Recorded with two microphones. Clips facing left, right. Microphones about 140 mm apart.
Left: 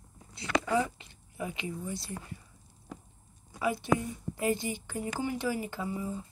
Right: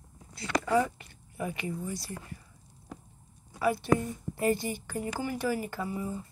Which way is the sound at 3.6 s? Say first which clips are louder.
Right 2 dB; 20° left (ahead or behind).